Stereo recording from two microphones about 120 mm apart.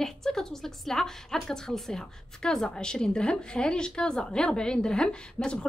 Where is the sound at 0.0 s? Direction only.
5° left (ahead or behind).